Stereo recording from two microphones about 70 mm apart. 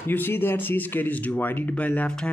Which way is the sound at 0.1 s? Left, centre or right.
Left.